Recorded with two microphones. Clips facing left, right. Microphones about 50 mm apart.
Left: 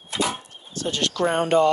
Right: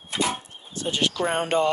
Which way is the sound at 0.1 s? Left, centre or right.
Centre.